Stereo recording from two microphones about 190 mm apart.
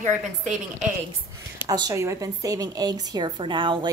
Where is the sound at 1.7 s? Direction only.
20° right (ahead or behind).